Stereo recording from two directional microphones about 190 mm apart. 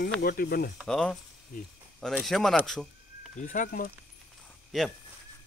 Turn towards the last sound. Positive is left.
turn(degrees=0)  # may be behind; listen again after turning